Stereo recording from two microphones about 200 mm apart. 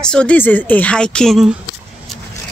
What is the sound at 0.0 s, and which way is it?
Speech, 5° left (ahead or behind).